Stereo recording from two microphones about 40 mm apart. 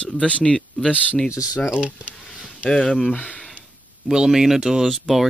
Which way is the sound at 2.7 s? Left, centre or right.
Centre.